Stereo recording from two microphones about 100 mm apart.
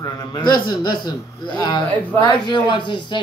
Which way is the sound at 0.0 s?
45° left (ahead or behind).